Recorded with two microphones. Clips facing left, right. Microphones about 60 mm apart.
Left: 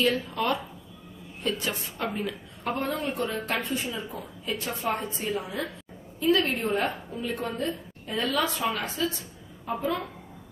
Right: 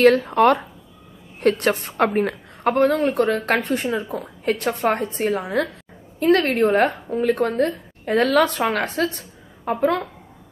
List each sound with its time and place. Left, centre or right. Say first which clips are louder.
0.0 s a woman's voice: right 12 dB; right